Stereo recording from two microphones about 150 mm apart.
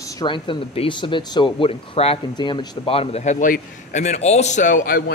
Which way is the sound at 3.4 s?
60° left (ahead or behind).